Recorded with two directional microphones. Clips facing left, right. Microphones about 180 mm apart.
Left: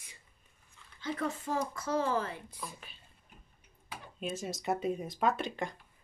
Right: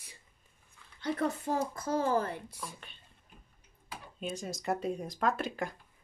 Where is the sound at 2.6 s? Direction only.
Centre (ahead or behind).